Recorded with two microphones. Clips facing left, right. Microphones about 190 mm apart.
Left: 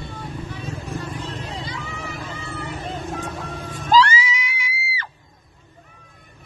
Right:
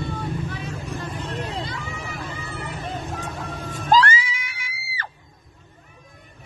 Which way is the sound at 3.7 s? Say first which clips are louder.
Left 2 dB; 50° right (ahead or behind).